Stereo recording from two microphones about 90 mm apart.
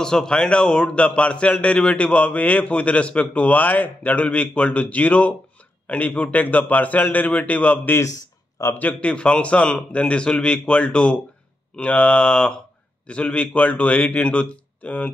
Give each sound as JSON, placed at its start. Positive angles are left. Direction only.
{"t": 0.0, "sound": "a man's voice", "side_deg": 5}
{"t": 8.0, "sound": "a sound", "side_deg": 35}
{"t": 8.7, "sound": "a man's voice", "side_deg": 15}